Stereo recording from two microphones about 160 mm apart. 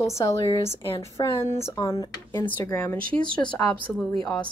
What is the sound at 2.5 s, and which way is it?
Speech, 10° left (ahead or behind).